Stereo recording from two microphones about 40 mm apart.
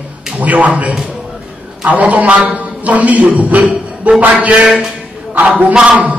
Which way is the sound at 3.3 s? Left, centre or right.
Right.